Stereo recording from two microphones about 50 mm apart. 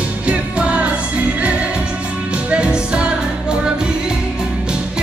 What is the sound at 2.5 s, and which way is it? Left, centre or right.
Music, centre.